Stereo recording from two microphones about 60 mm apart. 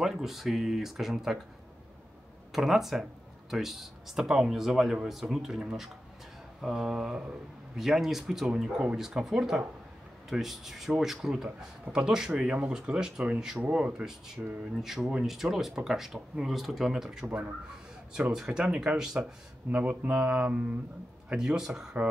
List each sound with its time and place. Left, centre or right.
0.0 s speech: centre
2.5 s speech: centre
19.2 s mantra: right
21.3 s speech: centre